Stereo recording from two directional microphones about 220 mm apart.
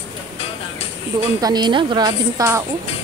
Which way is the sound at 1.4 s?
20° right (ahead or behind).